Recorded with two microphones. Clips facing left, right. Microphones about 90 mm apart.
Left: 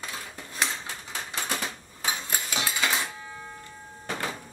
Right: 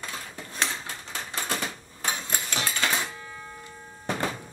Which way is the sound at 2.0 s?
5° left (ahead or behind).